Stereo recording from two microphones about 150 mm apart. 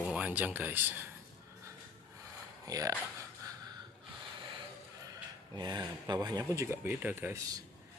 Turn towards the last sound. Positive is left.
turn(degrees=-15)  # may be behind; listen again after turning